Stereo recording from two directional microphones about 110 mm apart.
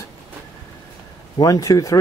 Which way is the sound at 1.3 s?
35° left (ahead or behind).